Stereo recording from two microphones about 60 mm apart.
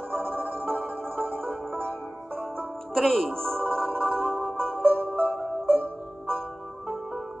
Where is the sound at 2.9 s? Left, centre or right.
Centre.